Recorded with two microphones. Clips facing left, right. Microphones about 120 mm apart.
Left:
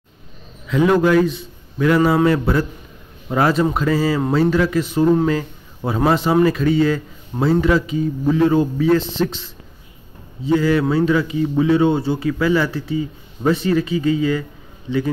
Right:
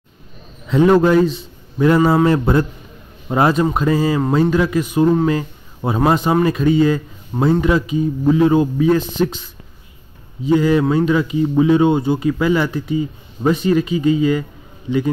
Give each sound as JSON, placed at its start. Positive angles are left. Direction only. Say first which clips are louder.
{"t": 0.7, "sound": "a man's voice", "louder": "right 3 dB", "side_deg": -30}